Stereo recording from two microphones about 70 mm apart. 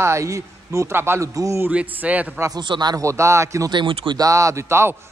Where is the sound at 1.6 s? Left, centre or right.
Right.